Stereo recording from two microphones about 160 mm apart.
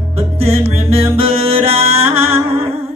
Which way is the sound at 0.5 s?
35° right (ahead or behind).